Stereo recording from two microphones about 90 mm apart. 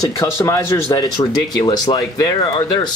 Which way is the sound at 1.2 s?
50° left (ahead or behind).